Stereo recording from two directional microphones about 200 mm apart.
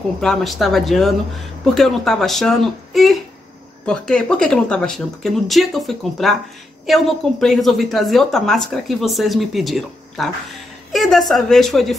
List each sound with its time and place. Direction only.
0.2 s speech: centre (ahead or behind)